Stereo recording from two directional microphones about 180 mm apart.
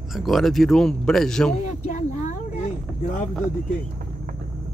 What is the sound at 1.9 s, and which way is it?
Speech, 45° left (ahead or behind).